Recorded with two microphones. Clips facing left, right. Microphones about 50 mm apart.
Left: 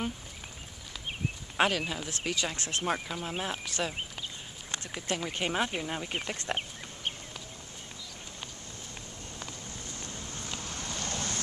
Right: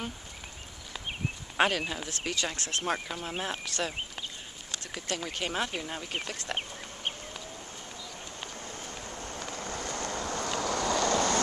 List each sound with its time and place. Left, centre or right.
1.6 s speech: centre
2.5 s speech: centre
2.9 s speech: centre
3.6 s speech: centre
8.6 s vehicle: right